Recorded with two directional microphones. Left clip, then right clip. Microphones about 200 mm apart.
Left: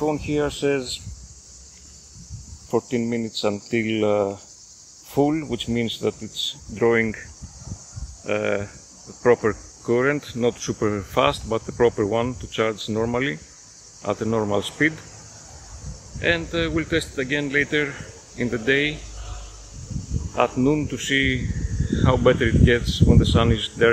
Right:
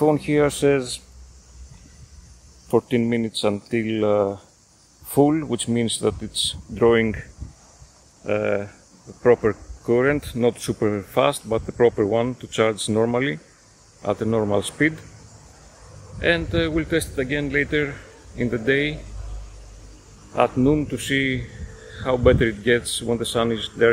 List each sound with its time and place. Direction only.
0.0 s speech: 20° right (ahead or behind)
2.7 s speech: 15° right (ahead or behind)
8.3 s speech: 5° right (ahead or behind)
16.2 s speech: 10° right (ahead or behind)
20.3 s speech: 5° right (ahead or behind)